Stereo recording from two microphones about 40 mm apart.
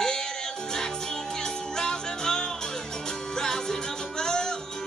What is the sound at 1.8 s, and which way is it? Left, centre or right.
Music, centre.